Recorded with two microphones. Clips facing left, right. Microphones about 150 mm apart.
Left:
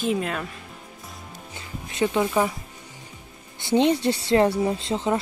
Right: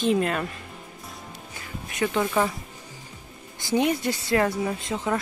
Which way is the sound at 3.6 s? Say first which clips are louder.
Left 3 dB; 25° left (ahead or behind).